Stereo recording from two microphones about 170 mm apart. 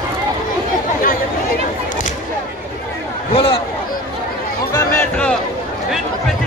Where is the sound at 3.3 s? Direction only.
30° left (ahead or behind).